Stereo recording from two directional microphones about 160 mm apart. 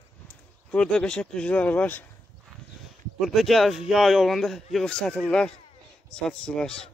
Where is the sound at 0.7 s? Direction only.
5° left (ahead or behind).